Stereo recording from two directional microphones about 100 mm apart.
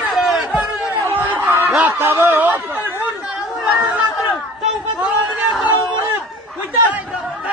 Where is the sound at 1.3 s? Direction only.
25° right (ahead or behind).